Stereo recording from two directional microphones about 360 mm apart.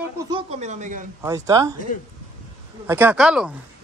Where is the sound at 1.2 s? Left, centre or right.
Centre.